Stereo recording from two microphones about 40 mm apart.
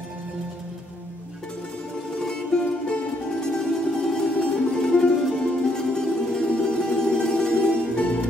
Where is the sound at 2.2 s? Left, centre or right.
Centre.